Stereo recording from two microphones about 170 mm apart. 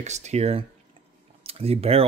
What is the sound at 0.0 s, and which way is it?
Speech, 40° right (ahead or behind).